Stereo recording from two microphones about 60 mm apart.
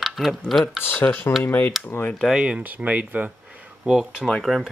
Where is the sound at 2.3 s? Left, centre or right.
Centre.